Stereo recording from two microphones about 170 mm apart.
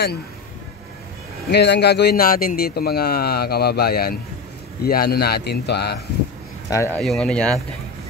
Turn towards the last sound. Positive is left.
turn(degrees=5)  # may be behind; listen again after turning